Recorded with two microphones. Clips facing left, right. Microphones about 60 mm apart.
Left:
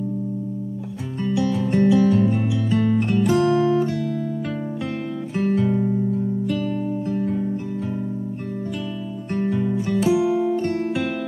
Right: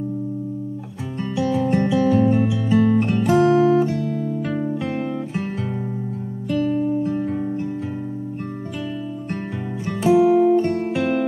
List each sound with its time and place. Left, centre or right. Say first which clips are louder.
1.2 s music: right 1 dB; centre
3.4 s music: right 3 dB; centre
5.3 s guitar: left 6 dB; centre
6.5 s music: right 4 dB; centre
9.3 s music: left 11 dB; centre
11.0 s music: right 4 dB; centre